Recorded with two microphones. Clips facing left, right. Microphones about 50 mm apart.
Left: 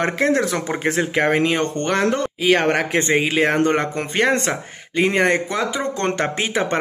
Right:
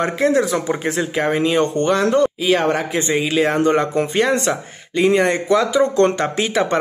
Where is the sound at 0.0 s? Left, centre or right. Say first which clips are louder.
Right 2 dB; left.